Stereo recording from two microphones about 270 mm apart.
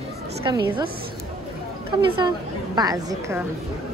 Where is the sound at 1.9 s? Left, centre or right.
Centre.